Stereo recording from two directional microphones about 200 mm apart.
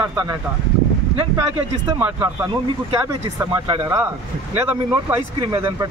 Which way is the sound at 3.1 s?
20° right (ahead or behind).